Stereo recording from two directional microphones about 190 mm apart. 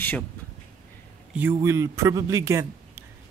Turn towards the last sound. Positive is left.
turn(degrees=-15)  # may be behind; listen again after turning